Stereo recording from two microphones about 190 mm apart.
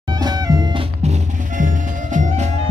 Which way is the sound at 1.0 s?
40° right (ahead or behind).